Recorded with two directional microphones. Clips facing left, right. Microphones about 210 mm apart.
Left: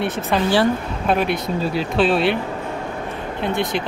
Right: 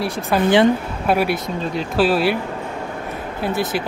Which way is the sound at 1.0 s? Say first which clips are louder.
Right 1 dB; 5° right (ahead or behind).